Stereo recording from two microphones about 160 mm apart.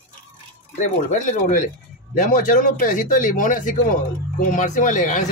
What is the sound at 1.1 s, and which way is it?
Speech, 55° left (ahead or behind).